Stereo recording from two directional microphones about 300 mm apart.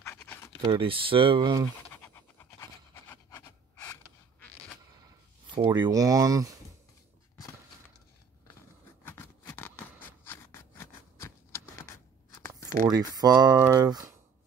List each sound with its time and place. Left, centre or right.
0.0 s scratch: centre
0.7 s speech: centre
1.9 s a sound: centre
5.5 s speech: centre
9.0 s a sound: centre
12.8 s speech: centre